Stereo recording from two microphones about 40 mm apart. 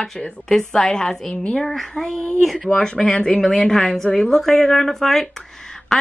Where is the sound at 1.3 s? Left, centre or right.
Left.